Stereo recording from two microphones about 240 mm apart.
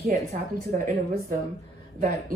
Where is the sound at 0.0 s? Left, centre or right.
Right.